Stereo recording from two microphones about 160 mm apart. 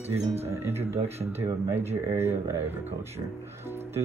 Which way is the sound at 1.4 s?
15° right (ahead or behind).